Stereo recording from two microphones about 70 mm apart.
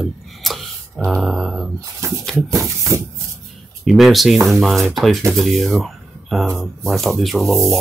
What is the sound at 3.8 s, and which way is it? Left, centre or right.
Speech, centre.